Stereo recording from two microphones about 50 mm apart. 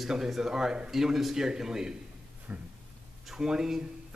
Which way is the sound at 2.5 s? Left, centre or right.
Right.